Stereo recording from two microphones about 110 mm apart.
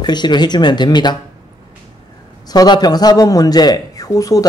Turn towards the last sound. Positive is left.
turn(degrees=30)  # may be behind; listen again after turning